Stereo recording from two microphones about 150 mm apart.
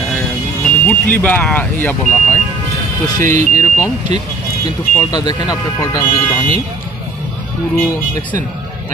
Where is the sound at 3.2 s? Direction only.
55° right (ahead or behind).